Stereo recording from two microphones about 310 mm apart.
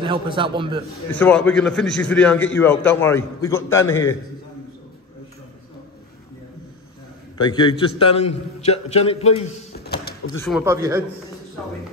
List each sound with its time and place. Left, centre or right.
0.0 s a man's voice: centre
1.2 s a man's voice: centre
7.5 s a man's voice: centre
9.8 s a sound: left
10.5 s a man's voice: centre